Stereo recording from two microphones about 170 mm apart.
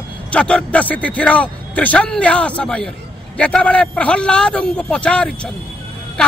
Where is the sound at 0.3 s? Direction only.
5° left (ahead or behind).